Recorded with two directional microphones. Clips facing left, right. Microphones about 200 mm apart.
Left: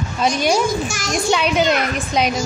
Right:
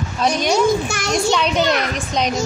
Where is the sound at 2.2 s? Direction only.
5° left (ahead or behind).